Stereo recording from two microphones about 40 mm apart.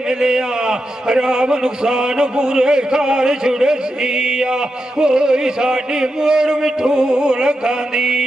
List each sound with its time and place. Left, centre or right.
0.2 s a man's voice: centre